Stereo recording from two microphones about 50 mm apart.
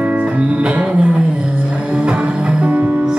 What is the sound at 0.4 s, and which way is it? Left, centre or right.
Music, right.